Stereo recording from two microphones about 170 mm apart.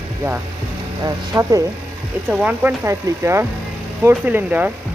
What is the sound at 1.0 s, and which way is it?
Speech, 20° right (ahead or behind).